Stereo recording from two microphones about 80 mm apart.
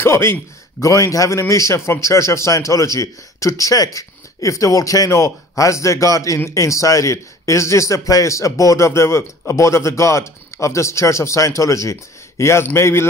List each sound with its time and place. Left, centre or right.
0.0 s a man's voice: left